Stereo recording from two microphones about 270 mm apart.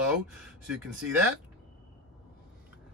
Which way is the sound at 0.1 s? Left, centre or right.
Centre.